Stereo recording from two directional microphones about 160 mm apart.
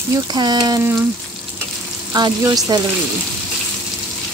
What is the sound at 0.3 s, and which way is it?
Speech, 25° right (ahead or behind).